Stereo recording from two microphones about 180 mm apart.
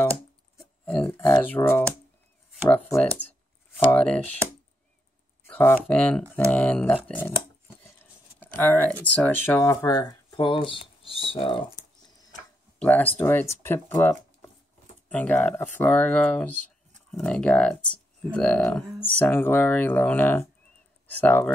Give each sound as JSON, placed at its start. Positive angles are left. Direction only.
{"t": 0.6, "sound": "a sound", "side_deg": 5}
{"t": 1.4, "sound": "speech", "side_deg": 10}
{"t": 5.5, "sound": "speech", "side_deg": 10}
{"t": 12.8, "sound": "speech", "side_deg": 10}
{"t": 15.0, "sound": "speech", "side_deg": 10}